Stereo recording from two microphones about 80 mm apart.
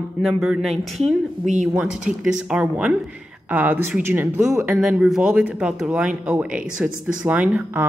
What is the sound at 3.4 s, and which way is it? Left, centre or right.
Speech, right.